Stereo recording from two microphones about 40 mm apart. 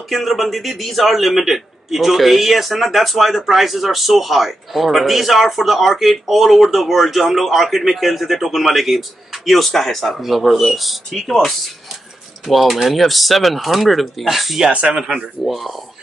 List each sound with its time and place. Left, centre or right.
0.1 s a man's voice: centre
14.7 s speech: right
15.0 s speech: centre
15.4 s a man's voice: centre